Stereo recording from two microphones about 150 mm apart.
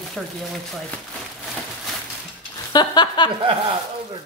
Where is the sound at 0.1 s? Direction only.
Centre (ahead or behind).